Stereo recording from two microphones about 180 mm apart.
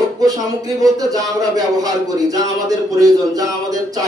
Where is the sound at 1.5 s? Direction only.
20° right (ahead or behind).